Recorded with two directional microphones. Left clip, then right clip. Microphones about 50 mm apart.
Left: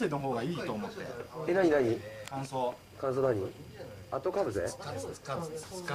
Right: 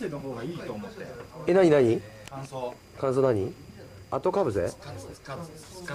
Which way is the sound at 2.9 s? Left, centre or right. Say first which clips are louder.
Right 7 dB; right.